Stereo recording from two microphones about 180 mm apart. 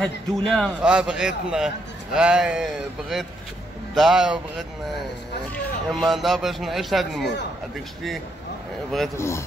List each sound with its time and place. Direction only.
0.0 s a man's voice: 5° left (ahead or behind)
9.1 s speech: 15° left (ahead or behind)